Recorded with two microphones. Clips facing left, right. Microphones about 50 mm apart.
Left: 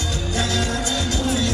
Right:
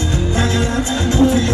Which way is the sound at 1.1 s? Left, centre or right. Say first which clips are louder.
Right 12 dB; right.